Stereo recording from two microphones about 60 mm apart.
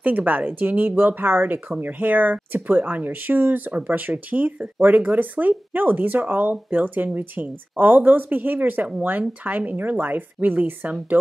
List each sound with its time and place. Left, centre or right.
0.0 s speech: right